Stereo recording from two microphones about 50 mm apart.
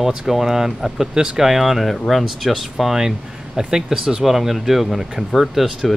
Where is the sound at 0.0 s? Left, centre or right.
Centre.